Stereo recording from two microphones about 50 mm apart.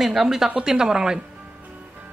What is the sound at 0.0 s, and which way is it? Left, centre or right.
A woman's voice, centre.